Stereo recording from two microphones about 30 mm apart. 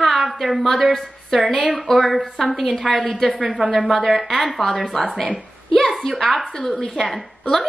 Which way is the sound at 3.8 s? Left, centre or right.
Centre.